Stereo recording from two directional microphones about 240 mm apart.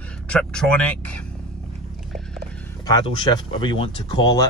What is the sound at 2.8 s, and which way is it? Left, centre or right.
Speech, centre.